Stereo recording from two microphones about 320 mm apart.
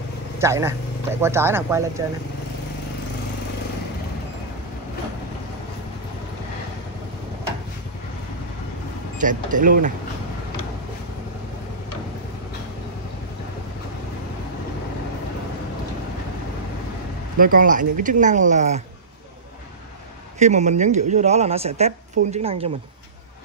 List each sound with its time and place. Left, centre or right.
0.4 s speech: centre
9.2 s speech: right
17.4 s speech: right
20.3 s speech: right